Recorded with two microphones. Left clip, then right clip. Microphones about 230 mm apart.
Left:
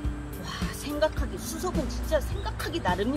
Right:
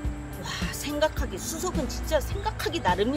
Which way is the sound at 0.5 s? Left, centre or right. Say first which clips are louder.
Right 3 dB; right.